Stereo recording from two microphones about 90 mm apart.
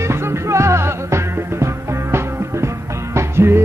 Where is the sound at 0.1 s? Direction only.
30° right (ahead or behind).